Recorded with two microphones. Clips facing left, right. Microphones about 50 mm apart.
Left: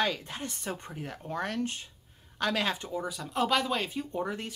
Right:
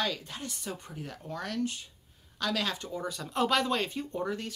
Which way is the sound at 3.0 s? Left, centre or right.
Centre.